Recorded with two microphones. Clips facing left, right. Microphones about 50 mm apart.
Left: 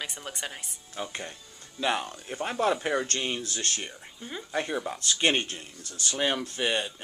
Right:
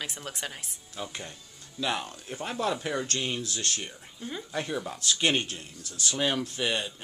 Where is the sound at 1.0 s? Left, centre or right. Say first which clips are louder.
Left 1 dB; centre.